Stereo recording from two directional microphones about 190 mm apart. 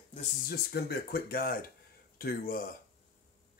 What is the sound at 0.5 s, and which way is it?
Speech, 55° left (ahead or behind).